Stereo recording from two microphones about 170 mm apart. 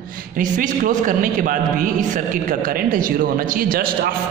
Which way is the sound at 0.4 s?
55° right (ahead or behind).